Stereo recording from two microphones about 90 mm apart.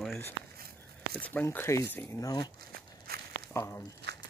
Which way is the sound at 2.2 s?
45° left (ahead or behind).